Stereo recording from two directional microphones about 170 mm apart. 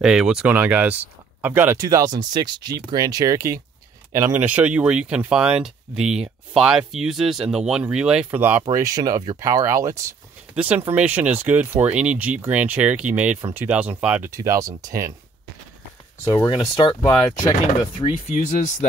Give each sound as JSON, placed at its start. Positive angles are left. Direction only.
{"t": 0.0, "sound": "speech", "side_deg": -5}
{"t": 10.5, "sound": "speech", "side_deg": -10}
{"t": 14.3, "sound": "speech", "side_deg": -20}
{"t": 16.3, "sound": "speech", "side_deg": 30}